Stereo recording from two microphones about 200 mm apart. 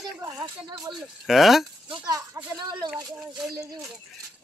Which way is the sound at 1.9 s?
20° right (ahead or behind).